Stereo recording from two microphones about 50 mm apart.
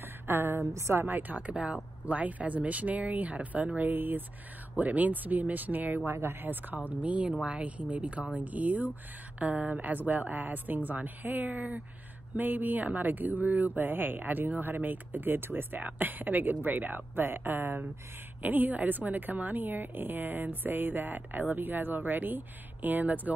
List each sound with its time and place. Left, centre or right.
0.0 s a sound: right
0.7 s a woman's voice: right
1.0 s a woman's voice: right
6.0 s a woman's voice: right